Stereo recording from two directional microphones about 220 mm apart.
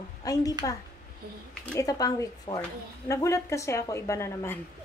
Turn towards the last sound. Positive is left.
turn(degrees=10)  # may be behind; listen again after turning